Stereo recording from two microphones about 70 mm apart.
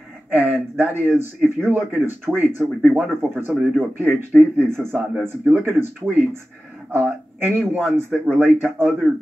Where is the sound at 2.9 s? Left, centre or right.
Right.